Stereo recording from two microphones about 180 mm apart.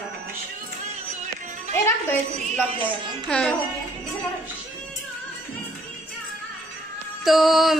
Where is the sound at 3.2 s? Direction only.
Centre (ahead or behind).